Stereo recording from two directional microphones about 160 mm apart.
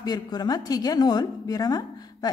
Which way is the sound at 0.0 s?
25° left (ahead or behind).